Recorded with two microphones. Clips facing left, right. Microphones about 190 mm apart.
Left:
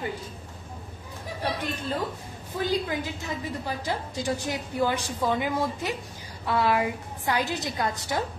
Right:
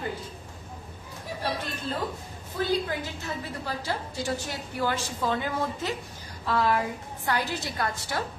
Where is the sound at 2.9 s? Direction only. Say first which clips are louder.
Left 2 dB; 15° left (ahead or behind).